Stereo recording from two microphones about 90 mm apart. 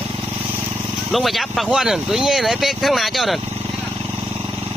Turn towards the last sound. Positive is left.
turn(degrees=0)  # may be behind; listen again after turning